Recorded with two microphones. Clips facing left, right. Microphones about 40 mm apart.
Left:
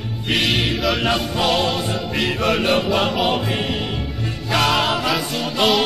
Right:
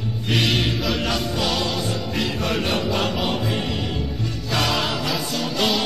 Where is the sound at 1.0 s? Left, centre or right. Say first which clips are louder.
Left 4 dB; left.